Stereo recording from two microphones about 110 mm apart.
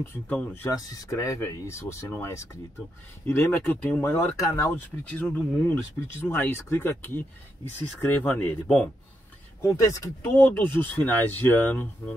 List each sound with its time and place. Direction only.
0.0 s speech: 15° left (ahead or behind)
0.7 s speech: 30° left (ahead or behind)
5.1 s speech: 15° left (ahead or behind)
9.6 s speech: 30° left (ahead or behind)